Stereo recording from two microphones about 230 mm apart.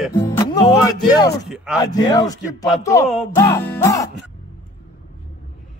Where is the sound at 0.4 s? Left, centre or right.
Centre.